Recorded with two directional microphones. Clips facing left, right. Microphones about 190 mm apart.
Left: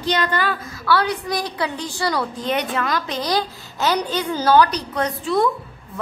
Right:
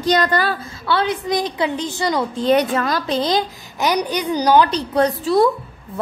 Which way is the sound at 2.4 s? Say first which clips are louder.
Right 11 dB; 35° right (ahead or behind).